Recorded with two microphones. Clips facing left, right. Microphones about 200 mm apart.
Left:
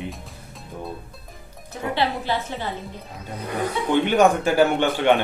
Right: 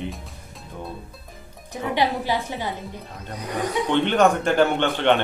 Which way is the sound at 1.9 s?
15° right (ahead or behind).